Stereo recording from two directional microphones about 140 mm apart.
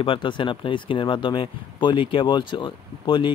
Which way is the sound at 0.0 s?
40° left (ahead or behind).